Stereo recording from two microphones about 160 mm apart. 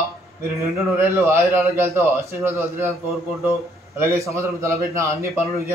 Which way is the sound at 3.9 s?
20° right (ahead or behind).